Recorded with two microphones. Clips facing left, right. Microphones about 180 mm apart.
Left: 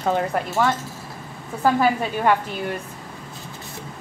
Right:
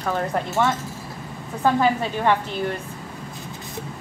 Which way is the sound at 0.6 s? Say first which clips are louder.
Left 1 dB; 5° left (ahead or behind).